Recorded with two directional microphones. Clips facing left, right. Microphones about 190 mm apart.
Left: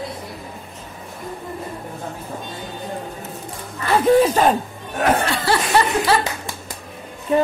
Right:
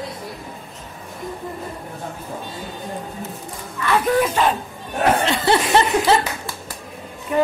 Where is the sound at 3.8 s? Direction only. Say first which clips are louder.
Left 4 dB; 30° left (ahead or behind).